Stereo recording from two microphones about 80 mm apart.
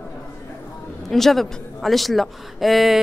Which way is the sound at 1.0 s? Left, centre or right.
Centre.